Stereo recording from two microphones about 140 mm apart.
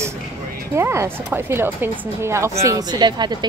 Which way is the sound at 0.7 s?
20° right (ahead or behind).